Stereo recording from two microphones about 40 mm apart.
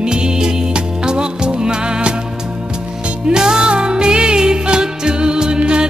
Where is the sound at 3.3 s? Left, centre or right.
Centre.